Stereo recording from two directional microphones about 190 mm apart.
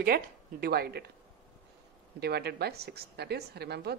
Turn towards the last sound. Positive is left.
turn(degrees=-60)  # may be behind; listen again after turning